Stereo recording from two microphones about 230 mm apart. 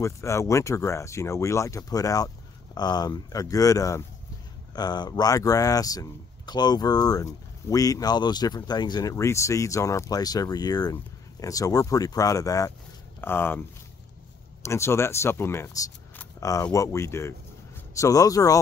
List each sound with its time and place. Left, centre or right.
0.0 s speech: centre
14.6 s speech: centre